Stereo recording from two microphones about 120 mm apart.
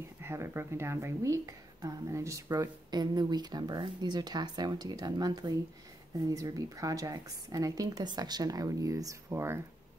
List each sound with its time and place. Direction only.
0.2 s speech: 20° right (ahead or behind)